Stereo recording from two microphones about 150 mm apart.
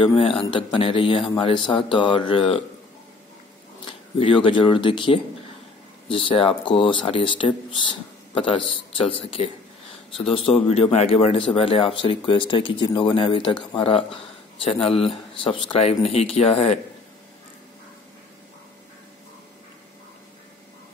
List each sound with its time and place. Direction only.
0.0 s speech: 40° left (ahead or behind)
4.2 s speech: 35° left (ahead or behind)